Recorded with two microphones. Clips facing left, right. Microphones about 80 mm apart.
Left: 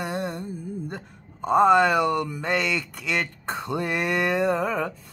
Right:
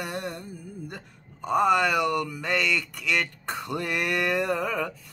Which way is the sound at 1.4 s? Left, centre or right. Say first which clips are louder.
Left 4 dB; left.